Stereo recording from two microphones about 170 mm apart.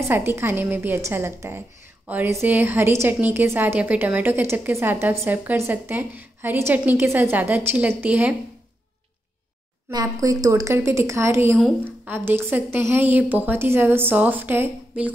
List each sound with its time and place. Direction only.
0.1 s speech: 15° right (ahead or behind)
9.8 s speech: 20° right (ahead or behind)